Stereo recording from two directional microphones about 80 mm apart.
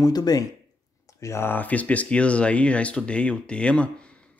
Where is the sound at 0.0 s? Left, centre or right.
Left.